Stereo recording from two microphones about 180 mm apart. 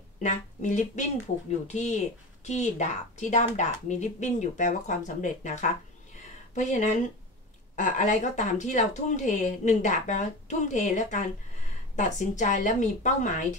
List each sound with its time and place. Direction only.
0.2 s speech: 40° left (ahead or behind)